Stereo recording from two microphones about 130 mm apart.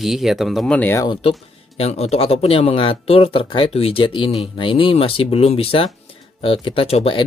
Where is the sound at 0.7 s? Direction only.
15° left (ahead or behind).